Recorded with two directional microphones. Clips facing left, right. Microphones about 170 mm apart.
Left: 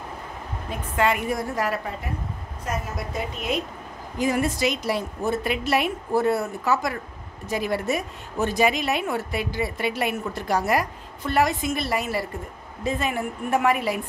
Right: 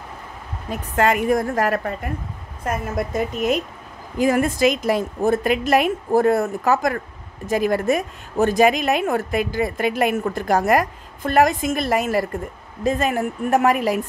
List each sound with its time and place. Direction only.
0.9 s a woman's voice: 45° right (ahead or behind)